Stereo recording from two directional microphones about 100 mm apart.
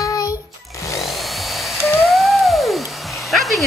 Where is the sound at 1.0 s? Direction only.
Centre (ahead or behind).